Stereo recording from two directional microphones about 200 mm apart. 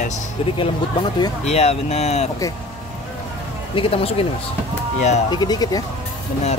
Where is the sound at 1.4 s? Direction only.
30° left (ahead or behind).